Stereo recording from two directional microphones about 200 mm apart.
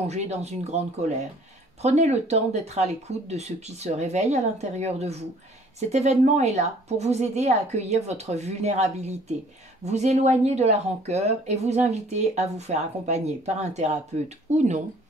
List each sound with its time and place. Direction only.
0.1 s speech: 35° right (ahead or behind)